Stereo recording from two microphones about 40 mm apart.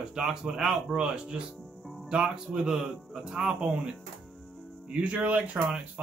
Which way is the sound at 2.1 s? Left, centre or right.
Right.